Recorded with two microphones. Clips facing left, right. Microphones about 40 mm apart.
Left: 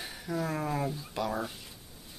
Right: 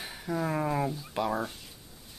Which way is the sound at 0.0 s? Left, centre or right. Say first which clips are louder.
Right 2 dB; centre.